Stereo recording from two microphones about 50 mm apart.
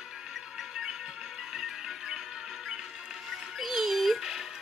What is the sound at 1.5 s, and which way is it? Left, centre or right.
Music, centre.